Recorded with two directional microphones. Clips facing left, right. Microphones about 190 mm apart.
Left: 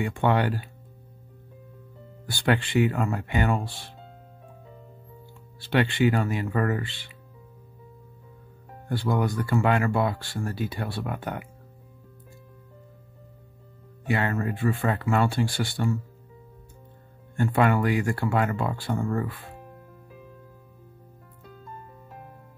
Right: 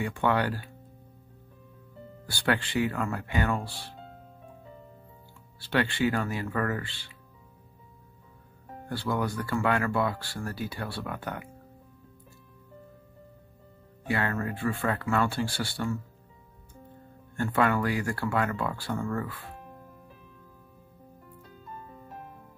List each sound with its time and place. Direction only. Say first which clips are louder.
0.2 s speech: left 3 dB; 25° left (ahead or behind)
2.4 s speech: left 4 dB; 20° left (ahead or behind)
5.6 s speech: left 4 dB; 20° left (ahead or behind)
8.8 s speech: left 4 dB; 20° left (ahead or behind)
14.1 s speech: left 3 dB; 20° left (ahead or behind)
17.4 s speech: left 3 dB; 20° left (ahead or behind)